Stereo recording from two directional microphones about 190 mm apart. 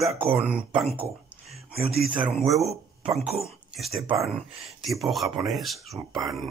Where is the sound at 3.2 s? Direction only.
30° right (ahead or behind).